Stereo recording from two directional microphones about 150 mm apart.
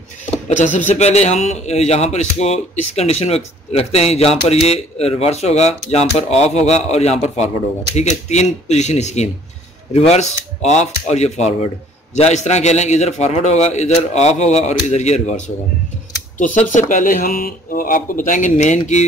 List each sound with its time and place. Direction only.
0.5 s a man's voice: 55° left (ahead or behind)